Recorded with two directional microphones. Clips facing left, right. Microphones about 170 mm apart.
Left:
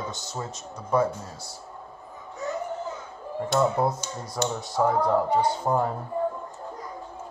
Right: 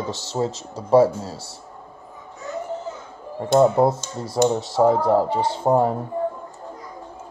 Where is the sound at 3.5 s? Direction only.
30° right (ahead or behind).